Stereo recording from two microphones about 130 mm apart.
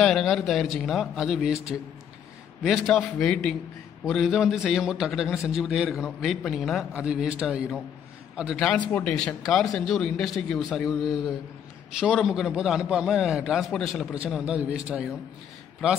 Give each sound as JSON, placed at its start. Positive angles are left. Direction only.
{"t": 0.0, "sound": "a man's voice", "side_deg": 0}
{"t": 2.6, "sound": "a man's voice", "side_deg": 5}